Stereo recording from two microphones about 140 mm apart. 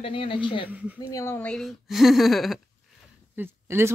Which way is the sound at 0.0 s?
40° left (ahead or behind).